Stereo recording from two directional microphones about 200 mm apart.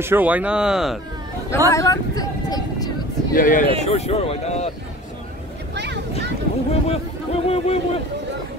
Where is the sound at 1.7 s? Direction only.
15° left (ahead or behind).